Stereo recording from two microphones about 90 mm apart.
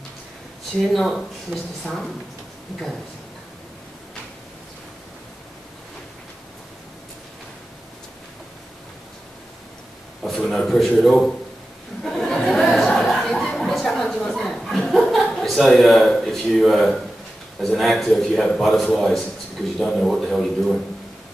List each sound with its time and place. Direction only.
0.9 s a man's voice: 5° left (ahead or behind)
10.2 s a man's voice: 5° left (ahead or behind)
12.0 s a sound: 5° left (ahead or behind)
17.6 s a man's voice: centre (ahead or behind)